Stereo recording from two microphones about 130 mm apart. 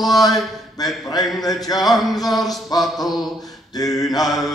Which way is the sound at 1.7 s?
Centre (ahead or behind).